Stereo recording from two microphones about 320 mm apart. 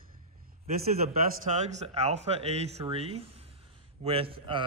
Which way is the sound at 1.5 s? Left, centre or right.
Right.